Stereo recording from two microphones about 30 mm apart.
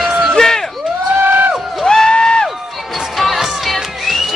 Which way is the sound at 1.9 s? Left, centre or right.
Left.